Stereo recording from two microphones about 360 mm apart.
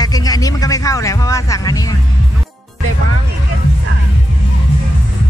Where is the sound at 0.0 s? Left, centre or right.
Centre.